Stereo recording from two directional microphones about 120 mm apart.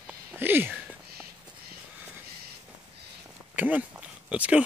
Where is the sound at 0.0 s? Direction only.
15° right (ahead or behind).